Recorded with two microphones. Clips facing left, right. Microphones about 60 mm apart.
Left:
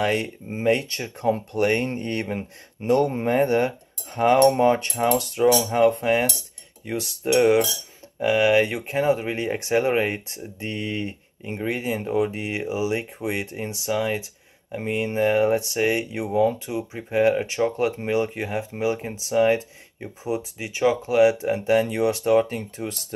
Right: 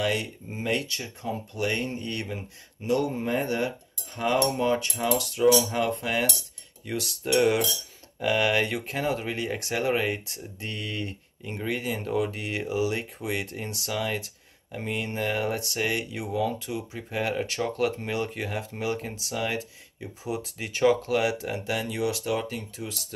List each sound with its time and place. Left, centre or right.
0.0 s speech: left
20.5 s speech: centre; by 23.0 s left